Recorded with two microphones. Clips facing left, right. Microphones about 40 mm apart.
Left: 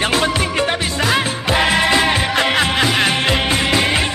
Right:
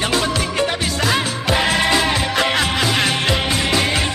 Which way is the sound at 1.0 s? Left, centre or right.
Centre.